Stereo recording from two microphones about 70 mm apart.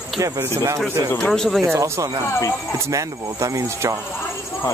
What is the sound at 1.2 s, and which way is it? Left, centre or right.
Speech, centre.